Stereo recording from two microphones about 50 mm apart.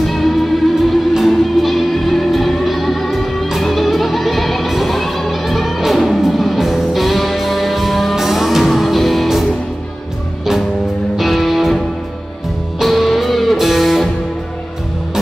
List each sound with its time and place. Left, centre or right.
0.0 s music: centre
11.1 s music: centre